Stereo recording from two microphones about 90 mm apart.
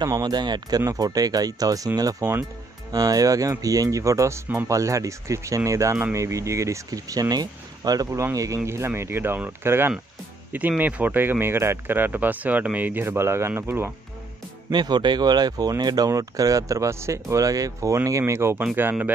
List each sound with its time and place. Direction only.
0.2 s speech: 50° right (ahead or behind); by 13.9 s 25° right (ahead or behind)
14.7 s speech: 55° right (ahead or behind); by 19.1 s 20° right (ahead or behind)